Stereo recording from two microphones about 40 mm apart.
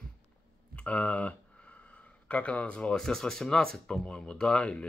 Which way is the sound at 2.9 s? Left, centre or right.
Centre.